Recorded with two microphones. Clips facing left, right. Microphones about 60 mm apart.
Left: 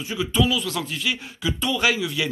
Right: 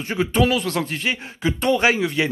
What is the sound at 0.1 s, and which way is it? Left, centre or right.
A man's voice, right.